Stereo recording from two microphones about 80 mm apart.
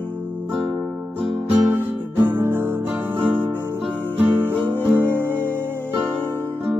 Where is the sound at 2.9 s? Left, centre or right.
Right.